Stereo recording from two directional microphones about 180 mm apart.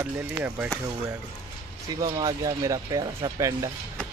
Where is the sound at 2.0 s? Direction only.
25° right (ahead or behind).